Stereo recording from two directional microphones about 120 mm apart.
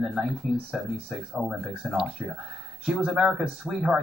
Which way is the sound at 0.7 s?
15° right (ahead or behind).